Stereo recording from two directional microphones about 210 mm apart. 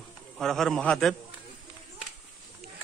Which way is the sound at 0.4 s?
Centre (ahead or behind).